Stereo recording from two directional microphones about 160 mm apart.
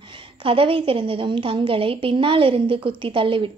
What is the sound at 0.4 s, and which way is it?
Speech, 35° right (ahead or behind).